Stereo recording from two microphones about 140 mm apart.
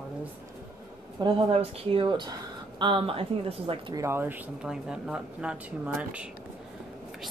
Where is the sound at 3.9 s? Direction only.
20° right (ahead or behind).